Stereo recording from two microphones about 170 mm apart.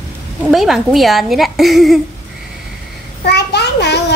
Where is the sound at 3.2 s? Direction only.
75° left (ahead or behind).